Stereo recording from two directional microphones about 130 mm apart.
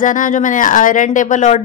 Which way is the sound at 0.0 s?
90° left.